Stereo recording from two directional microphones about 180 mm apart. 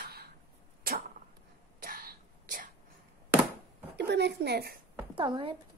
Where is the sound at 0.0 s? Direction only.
60° right (ahead or behind).